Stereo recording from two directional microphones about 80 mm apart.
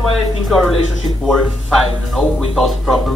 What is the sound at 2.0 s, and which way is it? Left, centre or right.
A man's voice, centre.